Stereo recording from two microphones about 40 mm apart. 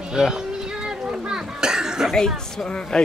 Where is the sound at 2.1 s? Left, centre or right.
Centre.